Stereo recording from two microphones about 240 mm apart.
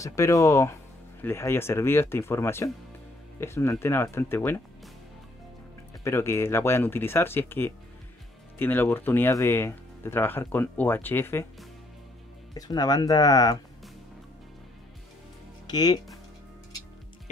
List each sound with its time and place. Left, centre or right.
0.0 s speech: centre
6.0 s speech: centre
12.5 s speech: centre
15.6 s speech: centre